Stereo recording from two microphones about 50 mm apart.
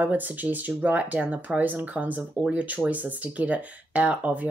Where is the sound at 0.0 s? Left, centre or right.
Right.